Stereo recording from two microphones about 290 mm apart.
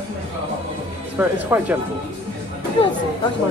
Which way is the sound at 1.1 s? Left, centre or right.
Centre.